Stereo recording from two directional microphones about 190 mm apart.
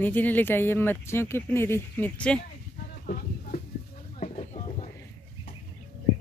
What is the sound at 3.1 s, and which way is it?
Music, 50° left (ahead or behind).